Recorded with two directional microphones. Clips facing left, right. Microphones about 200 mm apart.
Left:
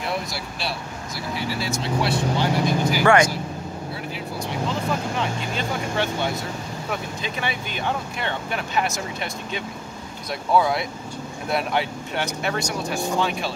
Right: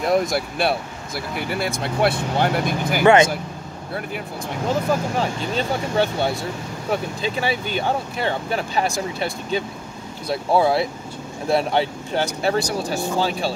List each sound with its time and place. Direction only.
0.0 s speech: 45° right (ahead or behind)
4.6 s speech: 40° right (ahead or behind)